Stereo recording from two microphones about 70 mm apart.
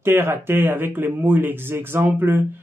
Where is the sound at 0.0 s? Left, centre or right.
Right.